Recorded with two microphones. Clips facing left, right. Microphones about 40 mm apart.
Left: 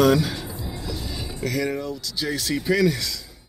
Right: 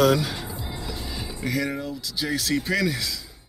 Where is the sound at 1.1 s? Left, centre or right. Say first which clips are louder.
Even; centre.